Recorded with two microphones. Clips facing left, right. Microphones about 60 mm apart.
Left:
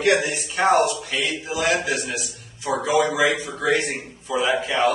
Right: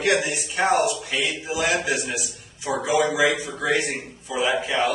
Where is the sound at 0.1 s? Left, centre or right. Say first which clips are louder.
Left 1 dB; left.